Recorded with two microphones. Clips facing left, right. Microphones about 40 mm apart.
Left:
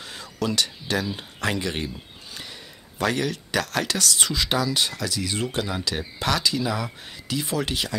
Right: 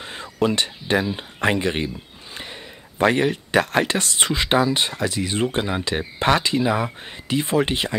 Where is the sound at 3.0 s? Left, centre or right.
Right.